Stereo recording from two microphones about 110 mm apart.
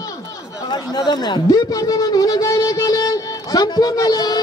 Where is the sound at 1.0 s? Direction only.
40° left (ahead or behind).